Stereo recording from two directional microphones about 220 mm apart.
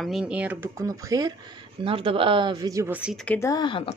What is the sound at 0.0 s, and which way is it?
Speech, centre (ahead or behind).